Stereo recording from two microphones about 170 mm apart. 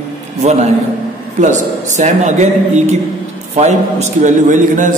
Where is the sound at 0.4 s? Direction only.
40° right (ahead or behind).